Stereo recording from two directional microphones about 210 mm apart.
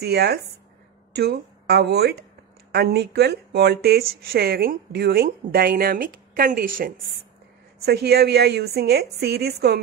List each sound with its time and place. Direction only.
0.0 s speech: 50° right (ahead or behind)